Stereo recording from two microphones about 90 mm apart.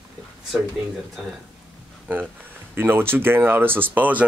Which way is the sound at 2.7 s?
25° right (ahead or behind).